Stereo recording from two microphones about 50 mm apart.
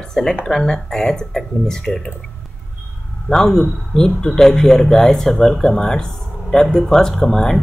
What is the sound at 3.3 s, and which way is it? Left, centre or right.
Speech, centre.